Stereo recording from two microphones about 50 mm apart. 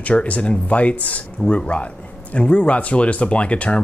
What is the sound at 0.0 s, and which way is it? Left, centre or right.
Speech, left.